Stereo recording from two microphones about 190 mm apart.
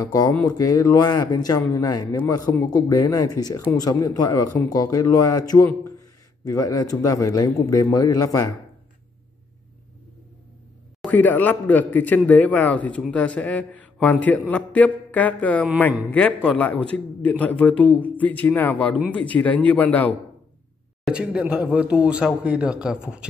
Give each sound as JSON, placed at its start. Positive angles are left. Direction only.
{"t": 0.0, "sound": "speech", "side_deg": 20}
{"t": 11.0, "sound": "a man's voice", "side_deg": 10}
{"t": 21.0, "sound": "speech", "side_deg": -5}